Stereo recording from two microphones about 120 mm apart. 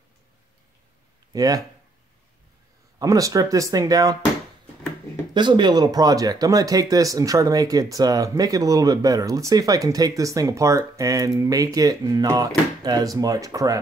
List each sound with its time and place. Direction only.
1.3 s speech: 30° right (ahead or behind)
3.0 s speech: 30° right (ahead or behind)
5.3 s speech: 40° right (ahead or behind)